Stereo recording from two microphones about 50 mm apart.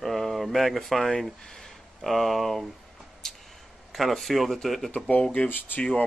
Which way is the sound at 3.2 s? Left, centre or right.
Centre.